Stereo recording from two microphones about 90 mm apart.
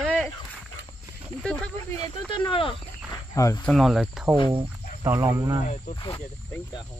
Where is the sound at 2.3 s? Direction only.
70° left (ahead or behind).